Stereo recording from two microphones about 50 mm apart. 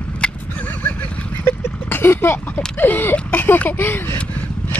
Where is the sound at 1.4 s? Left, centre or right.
Left.